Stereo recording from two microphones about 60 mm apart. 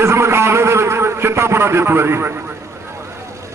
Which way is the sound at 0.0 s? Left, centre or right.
Right.